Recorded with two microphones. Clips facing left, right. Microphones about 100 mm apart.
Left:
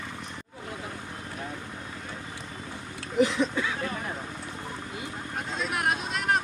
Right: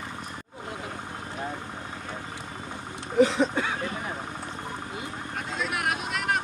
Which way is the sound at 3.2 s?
35° right (ahead or behind).